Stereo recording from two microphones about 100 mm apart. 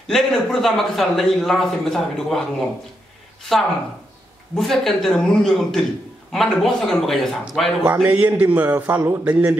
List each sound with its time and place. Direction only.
0.1 s a man's voice: centre (ahead or behind)
4.6 s a man's voice: centre (ahead or behind)
7.8 s a man's voice: 20° right (ahead or behind)